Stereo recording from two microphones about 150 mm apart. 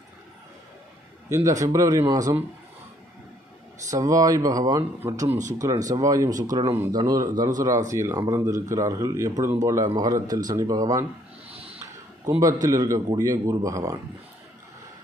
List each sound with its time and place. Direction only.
1.3 s speech: 20° right (ahead or behind)
3.9 s speech: 25° right (ahead or behind)
6.7 s speech: 15° right (ahead or behind)
11.5 s a sound: 40° right (ahead or behind)
12.6 s speech: 20° right (ahead or behind)